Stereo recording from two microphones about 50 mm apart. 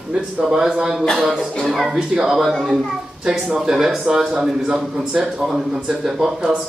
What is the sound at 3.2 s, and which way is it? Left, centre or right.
Speech, right.